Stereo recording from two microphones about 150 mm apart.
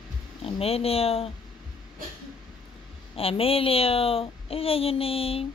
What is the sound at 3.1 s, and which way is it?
A child's voice, 40° left (ahead or behind).